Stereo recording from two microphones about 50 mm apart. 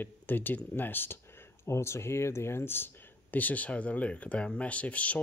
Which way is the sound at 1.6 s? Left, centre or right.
Left.